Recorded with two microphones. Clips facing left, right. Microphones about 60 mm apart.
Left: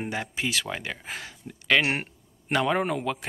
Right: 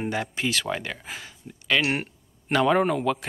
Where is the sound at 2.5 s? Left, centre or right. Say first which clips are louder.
Right 4 dB; centre.